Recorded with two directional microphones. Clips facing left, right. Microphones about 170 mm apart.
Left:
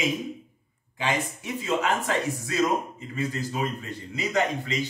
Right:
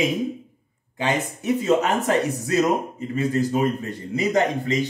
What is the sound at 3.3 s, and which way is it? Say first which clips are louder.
Speech: right 12 dB; 50° right (ahead or behind).